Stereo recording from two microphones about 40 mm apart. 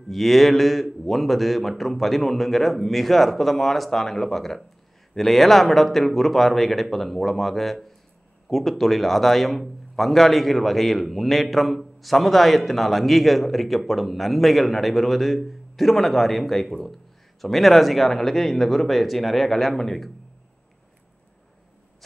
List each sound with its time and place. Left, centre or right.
0.1 s a man's voice: centre